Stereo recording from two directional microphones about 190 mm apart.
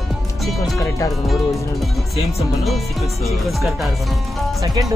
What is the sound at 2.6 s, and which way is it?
Speech, centre (ahead or behind).